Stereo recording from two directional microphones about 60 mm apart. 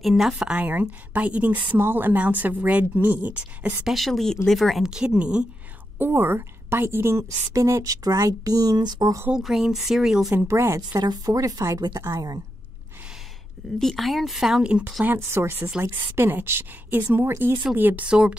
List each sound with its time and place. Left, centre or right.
0.0 s speech: centre
0.6 s speech: right
3.8 s speech: centre
5.9 s a woman's voice: right
9.4 s speech: centre
10.5 s speech: right
10.9 s a woman's voice: right
13.7 s speech: centre
15.1 s a woman's voice: right
18.0 s speech: centre